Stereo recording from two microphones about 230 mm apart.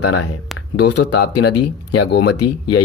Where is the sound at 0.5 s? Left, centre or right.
Centre.